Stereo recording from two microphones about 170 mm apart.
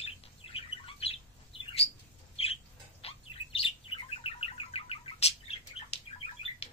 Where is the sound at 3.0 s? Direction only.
35° left (ahead or behind).